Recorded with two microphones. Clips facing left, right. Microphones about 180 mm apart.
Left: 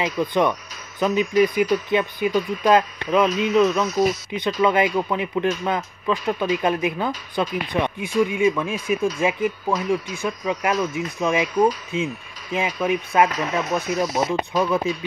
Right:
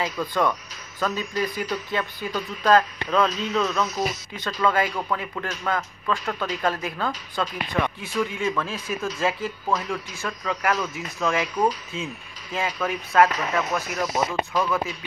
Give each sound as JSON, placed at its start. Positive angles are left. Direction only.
{"t": 0.0, "sound": "speech", "side_deg": 20}